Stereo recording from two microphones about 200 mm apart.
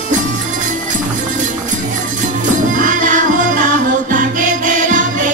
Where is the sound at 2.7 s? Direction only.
40° right (ahead or behind).